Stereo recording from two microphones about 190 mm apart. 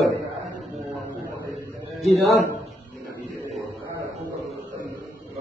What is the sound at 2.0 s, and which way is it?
Speech, centre (ahead or behind).